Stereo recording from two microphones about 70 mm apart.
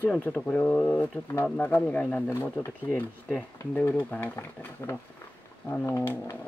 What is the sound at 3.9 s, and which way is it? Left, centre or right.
Speech, left.